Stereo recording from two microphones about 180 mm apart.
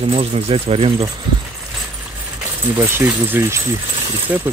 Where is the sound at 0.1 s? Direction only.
35° right (ahead or behind).